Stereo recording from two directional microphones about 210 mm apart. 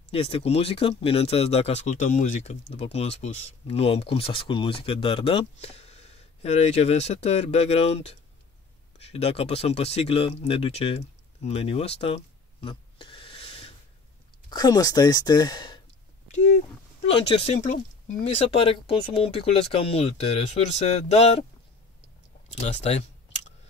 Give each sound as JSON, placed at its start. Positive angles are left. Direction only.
{"t": 0.1, "sound": "speech", "side_deg": 30}
{"t": 17.0, "sound": "speech", "side_deg": 30}
{"t": 22.8, "sound": "typing", "side_deg": 30}